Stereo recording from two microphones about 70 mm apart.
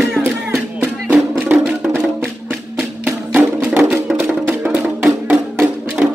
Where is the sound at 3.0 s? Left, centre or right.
Right.